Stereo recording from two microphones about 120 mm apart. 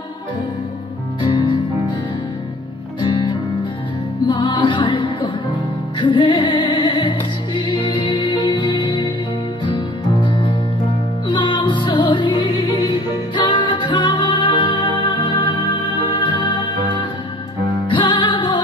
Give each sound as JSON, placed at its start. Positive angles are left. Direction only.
{"t": 1.2, "sound": "music", "side_deg": 40}
{"t": 3.0, "sound": "music", "side_deg": 40}